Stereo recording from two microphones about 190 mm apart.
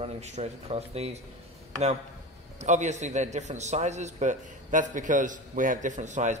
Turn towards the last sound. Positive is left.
turn(degrees=-40)  # may be behind; listen again after turning